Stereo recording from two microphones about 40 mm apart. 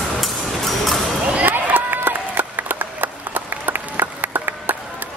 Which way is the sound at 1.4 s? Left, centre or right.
Right.